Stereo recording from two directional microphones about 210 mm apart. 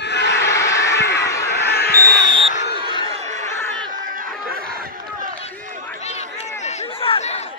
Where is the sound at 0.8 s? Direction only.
55° left (ahead or behind).